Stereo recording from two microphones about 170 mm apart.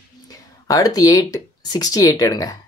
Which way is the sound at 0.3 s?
20° left (ahead or behind).